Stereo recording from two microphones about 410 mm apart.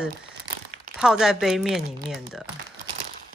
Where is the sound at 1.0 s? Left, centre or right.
Centre.